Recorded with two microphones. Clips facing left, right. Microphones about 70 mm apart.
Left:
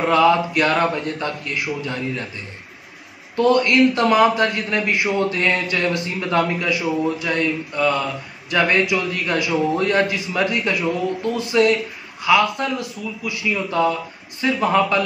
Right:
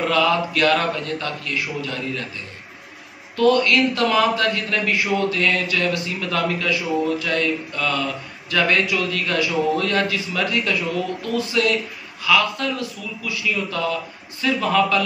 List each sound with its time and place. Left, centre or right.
0.0 s a man's voice: left
3.3 s a man's voice: left